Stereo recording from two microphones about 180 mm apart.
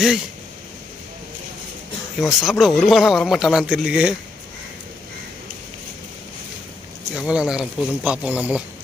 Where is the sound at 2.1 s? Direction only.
Centre (ahead or behind).